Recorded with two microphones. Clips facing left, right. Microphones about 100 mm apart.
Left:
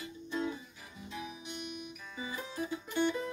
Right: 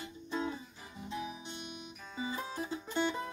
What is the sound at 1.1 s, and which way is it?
Guitar, 30° right (ahead or behind).